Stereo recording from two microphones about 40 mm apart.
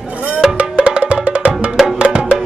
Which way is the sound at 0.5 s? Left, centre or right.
Right.